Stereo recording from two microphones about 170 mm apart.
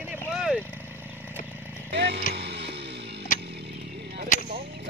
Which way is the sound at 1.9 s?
80° right.